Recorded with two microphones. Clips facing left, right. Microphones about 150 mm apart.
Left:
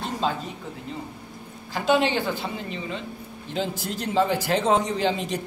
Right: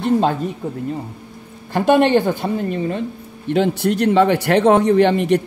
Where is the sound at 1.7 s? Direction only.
55° right (ahead or behind).